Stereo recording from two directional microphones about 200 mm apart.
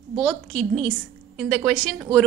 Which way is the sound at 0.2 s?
5° left (ahead or behind).